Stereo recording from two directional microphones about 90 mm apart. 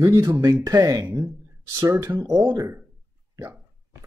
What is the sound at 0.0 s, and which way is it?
Speech, 35° right (ahead or behind).